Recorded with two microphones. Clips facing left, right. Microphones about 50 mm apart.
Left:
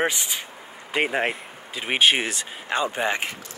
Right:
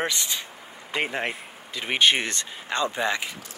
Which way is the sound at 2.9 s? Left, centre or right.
Left.